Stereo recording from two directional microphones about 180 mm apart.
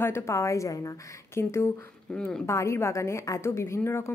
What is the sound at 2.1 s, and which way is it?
Speech, 5° left (ahead or behind).